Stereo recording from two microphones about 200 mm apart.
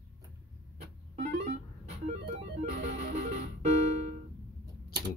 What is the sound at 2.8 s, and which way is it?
Music, 40° right (ahead or behind).